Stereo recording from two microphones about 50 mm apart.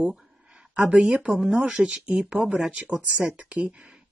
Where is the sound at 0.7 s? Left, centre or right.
Right.